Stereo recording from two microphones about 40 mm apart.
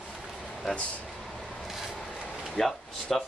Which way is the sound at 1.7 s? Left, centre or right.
Centre.